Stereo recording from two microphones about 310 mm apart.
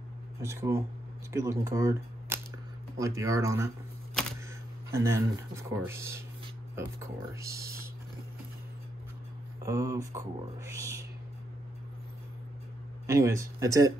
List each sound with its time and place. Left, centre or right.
0.4 s speech: centre
4.9 s speech: centre
7.3 s speech: centre
9.6 s speech: centre
13.0 s speech: centre